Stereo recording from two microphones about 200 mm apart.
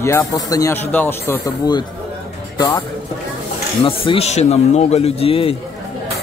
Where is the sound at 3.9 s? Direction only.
30° left (ahead or behind).